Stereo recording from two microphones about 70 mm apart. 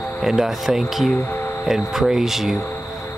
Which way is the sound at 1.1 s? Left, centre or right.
Left.